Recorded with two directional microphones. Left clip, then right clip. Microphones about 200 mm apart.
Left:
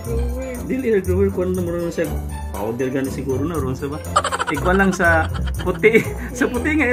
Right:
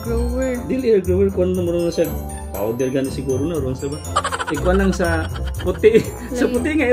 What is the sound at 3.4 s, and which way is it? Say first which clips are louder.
Speech: right 1 dB; 5° left (ahead or behind).